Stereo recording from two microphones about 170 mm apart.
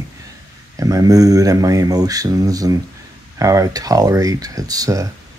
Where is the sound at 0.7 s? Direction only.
20° right (ahead or behind).